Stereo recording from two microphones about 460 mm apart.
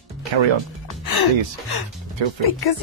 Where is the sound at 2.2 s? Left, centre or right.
Right.